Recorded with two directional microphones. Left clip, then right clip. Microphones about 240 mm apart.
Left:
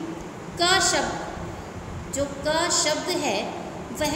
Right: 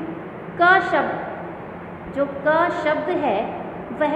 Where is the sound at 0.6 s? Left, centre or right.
Centre.